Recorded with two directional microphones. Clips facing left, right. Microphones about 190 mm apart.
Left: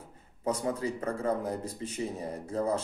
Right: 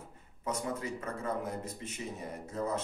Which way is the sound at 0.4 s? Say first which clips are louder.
Left 5 dB; 35° left (ahead or behind).